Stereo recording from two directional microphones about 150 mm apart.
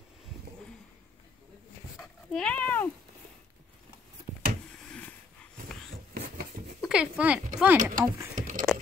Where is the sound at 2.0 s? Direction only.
5° left (ahead or behind).